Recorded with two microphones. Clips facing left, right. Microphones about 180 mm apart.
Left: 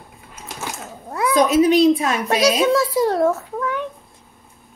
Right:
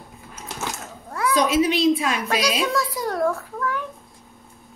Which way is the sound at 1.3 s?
45° left (ahead or behind).